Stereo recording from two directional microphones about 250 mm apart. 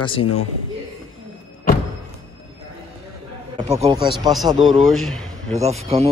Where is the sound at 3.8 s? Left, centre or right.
Centre.